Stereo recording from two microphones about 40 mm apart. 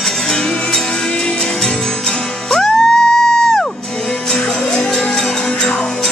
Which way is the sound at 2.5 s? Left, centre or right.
Centre.